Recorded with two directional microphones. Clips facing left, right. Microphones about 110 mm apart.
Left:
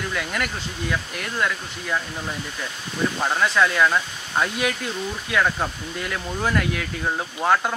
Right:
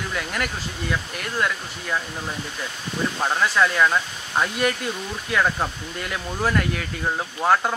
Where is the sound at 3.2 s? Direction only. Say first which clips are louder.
Even; centre (ahead or behind).